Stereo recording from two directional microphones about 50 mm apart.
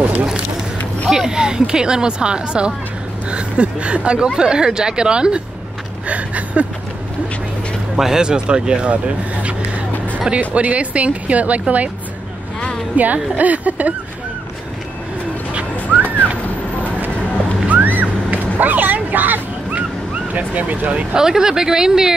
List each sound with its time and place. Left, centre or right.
0.0 s a sound: right
1.1 s speech: centre
7.9 s speech: centre; by 11.6 s right
12.9 s a woman's voice: right
15.5 s a sound: right
17.6 s vehicle: right
20.3 s speech: right
21.1 s speech: centre